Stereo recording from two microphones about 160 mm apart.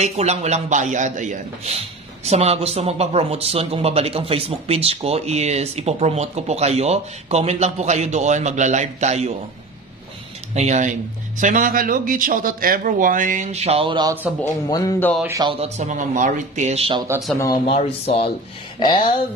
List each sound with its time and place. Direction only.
0.0 s a man's voice: 45° right (ahead or behind)
10.5 s a man's voice: 45° right (ahead or behind); by 14.1 s 30° right (ahead or behind)
14.4 s speech: 20° left (ahead or behind)
15.2 s speech: 20° right (ahead or behind)
15.5 s a man's voice: 40° right (ahead or behind)
17.6 s speech: 40° left (ahead or behind)